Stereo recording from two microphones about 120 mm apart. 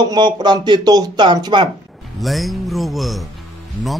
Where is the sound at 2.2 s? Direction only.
Centre (ahead or behind).